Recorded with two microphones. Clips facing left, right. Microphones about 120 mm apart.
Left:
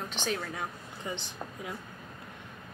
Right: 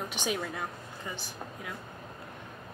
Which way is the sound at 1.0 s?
20° left (ahead or behind).